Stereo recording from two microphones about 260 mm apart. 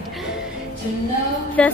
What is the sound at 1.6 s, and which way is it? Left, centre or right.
Speech, centre.